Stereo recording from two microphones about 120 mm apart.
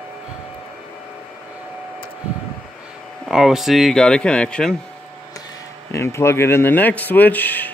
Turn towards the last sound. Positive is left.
turn(degrees=15)  # may be behind; listen again after turning